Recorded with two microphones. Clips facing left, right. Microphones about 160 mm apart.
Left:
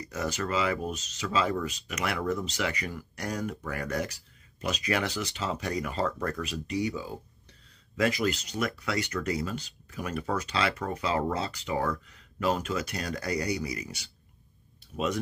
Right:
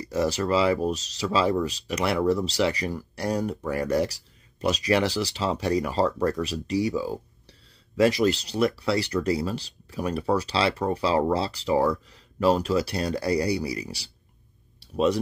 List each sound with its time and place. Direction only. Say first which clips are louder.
0.0 s speech: right 7 dB; 35° right (ahead or behind)